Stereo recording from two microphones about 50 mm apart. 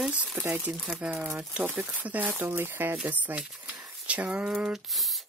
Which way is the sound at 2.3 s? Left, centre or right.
Right.